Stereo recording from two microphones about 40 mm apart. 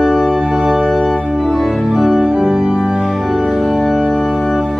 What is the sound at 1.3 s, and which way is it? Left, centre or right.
Organ, centre.